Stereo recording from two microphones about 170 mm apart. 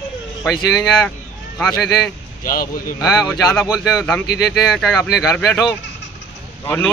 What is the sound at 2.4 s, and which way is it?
Speech, 55° left (ahead or behind).